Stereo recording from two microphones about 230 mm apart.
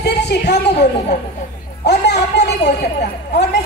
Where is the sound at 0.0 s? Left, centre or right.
Left.